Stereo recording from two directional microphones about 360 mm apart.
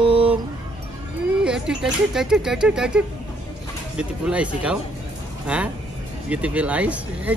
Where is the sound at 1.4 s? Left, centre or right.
Centre.